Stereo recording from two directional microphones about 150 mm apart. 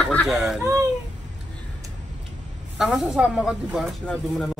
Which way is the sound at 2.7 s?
5° right (ahead or behind).